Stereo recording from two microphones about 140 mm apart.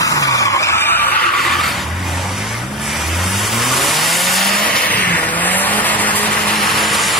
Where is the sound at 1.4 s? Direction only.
Centre (ahead or behind).